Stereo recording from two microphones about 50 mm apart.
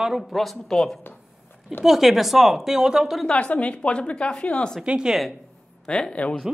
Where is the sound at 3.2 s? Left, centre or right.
Centre.